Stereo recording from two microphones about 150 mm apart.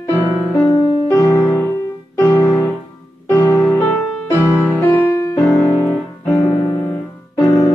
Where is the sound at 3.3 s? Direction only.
25° left (ahead or behind).